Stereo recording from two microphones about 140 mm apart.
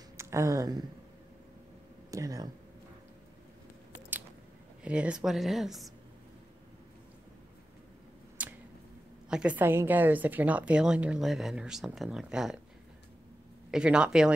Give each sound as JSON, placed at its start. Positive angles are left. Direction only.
{"t": 0.2, "sound": "speech", "side_deg": -20}
{"t": 2.0, "sound": "speech", "side_deg": -25}
{"t": 4.8, "sound": "speech", "side_deg": -10}
{"t": 8.4, "sound": "a sound", "side_deg": -10}
{"t": 9.3, "sound": "a woman's voice", "side_deg": -10}
{"t": 13.7, "sound": "speech", "side_deg": -5}